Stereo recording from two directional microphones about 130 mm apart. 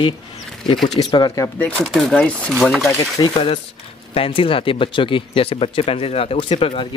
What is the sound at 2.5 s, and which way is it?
Speech, centre (ahead or behind).